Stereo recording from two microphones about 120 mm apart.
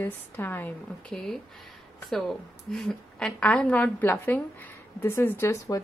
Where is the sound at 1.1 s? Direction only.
5° left (ahead or behind); by 5.7 s 25° left (ahead or behind).